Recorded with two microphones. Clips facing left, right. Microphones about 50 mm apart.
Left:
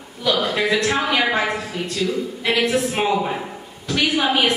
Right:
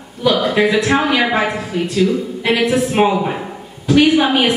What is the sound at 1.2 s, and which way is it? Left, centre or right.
A woman's voice, centre.